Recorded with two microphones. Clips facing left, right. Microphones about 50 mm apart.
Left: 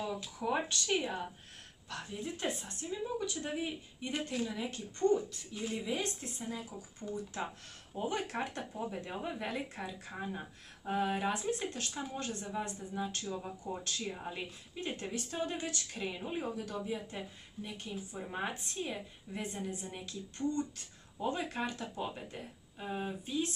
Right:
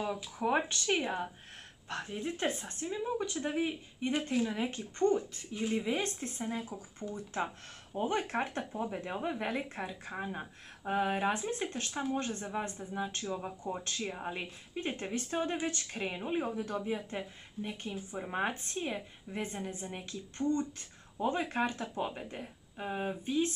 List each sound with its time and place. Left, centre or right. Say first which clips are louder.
0.4 s a woman's voice: right 3 dB; right
5.5 s speech: right 6 dB; centre
5.8 s a woman's voice: right 3 dB; right
7.0 s speech: even; centre
7.9 s a woman's voice: right 4 dB; right